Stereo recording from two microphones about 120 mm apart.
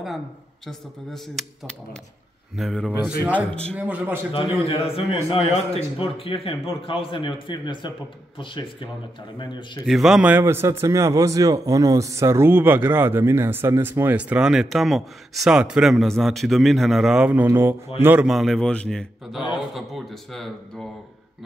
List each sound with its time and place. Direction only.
0.7 s a man's voice: 5° left (ahead or behind)
2.9 s speech: 20° left (ahead or behind)
3.7 s speech: 10° right (ahead or behind)
4.3 s a man's voice: 50° left (ahead or behind)
9.8 s a man's voice: 5° right (ahead or behind)
10.4 s speech: 20° right (ahead or behind)
17.5 s mantra: 20° right (ahead or behind)
18.2 s a man's voice: centre (ahead or behind)